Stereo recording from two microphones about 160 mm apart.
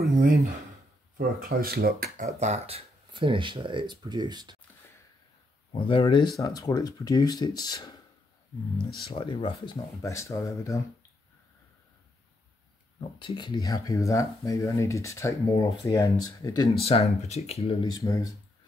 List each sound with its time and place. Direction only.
0.0 s a sound: 65° right (ahead or behind)
1.1 s speech: 65° right (ahead or behind)
2.1 s speech: 45° right (ahead or behind); by 4.6 s 25° right (ahead or behind)
5.7 s speech: 35° left (ahead or behind)
9.1 s speech: 35° left (ahead or behind)
10.0 s speech: 20° left (ahead or behind)
13.2 s speech: 30° left (ahead or behind)
16.8 s speech: 40° left (ahead or behind)
17.9 s speech: 20° left (ahead or behind)